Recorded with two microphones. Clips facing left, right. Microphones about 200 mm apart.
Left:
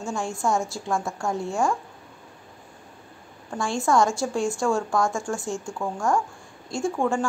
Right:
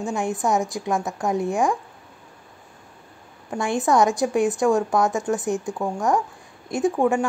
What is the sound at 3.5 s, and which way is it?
A woman's voice, 20° right (ahead or behind).